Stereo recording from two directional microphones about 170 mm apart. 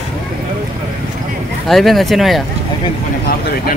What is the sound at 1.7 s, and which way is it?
Speech, centre (ahead or behind).